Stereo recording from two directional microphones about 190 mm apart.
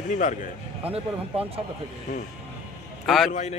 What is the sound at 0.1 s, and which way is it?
Speech, 40° left (ahead or behind).